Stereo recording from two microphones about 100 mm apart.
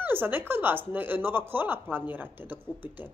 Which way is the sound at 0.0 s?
20° right (ahead or behind).